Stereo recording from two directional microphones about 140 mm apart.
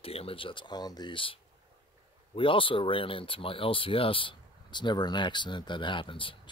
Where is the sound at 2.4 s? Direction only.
40° left (ahead or behind).